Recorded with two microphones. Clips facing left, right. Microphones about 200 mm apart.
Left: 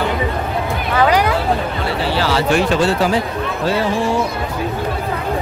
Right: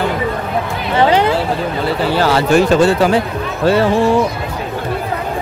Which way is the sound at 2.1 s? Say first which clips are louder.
Right 4 dB; 50° right (ahead or behind).